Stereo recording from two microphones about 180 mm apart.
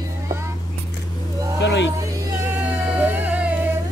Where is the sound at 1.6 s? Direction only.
75° left (ahead or behind).